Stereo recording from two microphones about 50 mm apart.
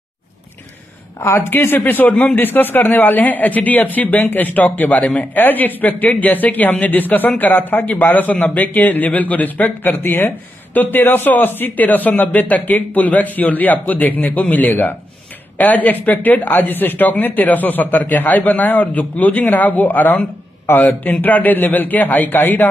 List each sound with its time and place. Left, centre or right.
1.5 s speech: left
9.9 s a man's voice: left